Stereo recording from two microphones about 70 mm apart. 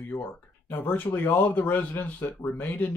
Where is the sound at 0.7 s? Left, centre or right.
Left.